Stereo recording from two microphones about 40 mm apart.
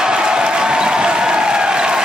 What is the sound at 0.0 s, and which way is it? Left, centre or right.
Applause, right.